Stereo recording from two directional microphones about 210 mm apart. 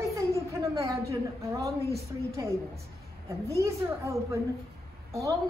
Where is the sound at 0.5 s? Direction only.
15° right (ahead or behind).